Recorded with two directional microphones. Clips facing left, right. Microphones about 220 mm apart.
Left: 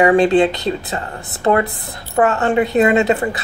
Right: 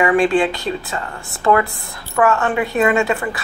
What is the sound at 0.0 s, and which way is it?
A woman's voice, 25° left (ahead or behind).